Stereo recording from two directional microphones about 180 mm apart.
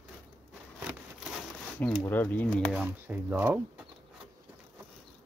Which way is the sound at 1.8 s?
Centre (ahead or behind).